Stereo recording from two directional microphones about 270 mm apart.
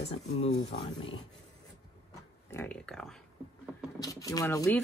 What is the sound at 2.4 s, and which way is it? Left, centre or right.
Speech, centre.